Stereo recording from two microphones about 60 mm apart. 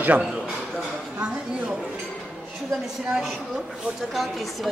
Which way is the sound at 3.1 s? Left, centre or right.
Centre.